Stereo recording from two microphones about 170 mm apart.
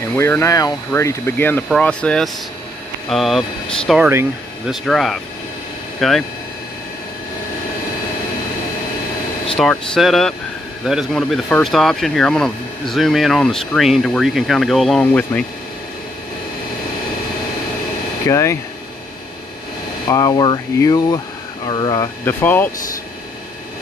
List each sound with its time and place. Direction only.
0.1 s speech: 15° left (ahead or behind)
9.6 s speech: centre (ahead or behind)
18.2 s speech: 15° left (ahead or behind)
20.1 s speech: 25° left (ahead or behind)